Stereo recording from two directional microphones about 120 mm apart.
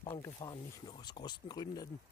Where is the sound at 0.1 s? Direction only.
30° left (ahead or behind).